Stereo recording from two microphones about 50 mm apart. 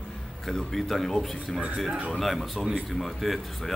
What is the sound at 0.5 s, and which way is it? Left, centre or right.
Speech, centre.